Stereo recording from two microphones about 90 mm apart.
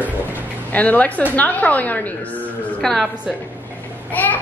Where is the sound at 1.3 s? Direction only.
15° left (ahead or behind).